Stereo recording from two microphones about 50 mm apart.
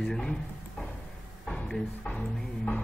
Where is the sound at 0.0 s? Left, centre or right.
Centre.